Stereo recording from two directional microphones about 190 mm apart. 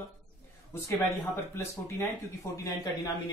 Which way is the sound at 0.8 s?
15° left (ahead or behind).